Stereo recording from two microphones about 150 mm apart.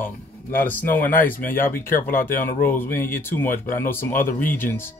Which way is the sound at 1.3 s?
65° left (ahead or behind).